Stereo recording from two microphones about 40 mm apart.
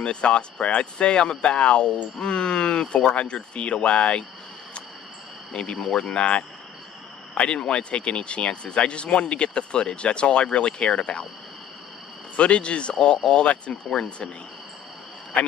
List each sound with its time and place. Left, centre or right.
0.0 s speech: left
5.5 s speech: left
7.3 s speech: left
12.4 s speech: left
15.3 s a man's voice: left